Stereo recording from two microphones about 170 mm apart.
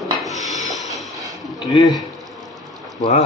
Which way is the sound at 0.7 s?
Centre (ahead or behind).